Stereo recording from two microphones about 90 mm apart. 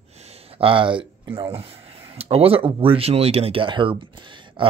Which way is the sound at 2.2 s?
90° right.